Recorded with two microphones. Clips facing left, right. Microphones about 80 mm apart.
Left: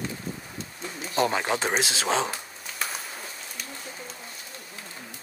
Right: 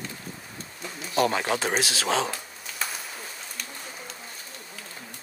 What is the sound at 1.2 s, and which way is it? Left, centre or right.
Speech, centre.